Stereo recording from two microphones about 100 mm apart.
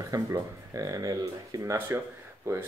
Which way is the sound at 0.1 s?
35° right (ahead or behind).